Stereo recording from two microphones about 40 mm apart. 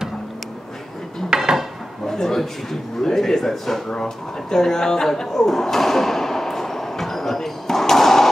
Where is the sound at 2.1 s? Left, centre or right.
Centre.